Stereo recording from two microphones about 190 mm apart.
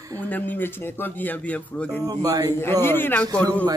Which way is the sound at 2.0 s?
20° right (ahead or behind).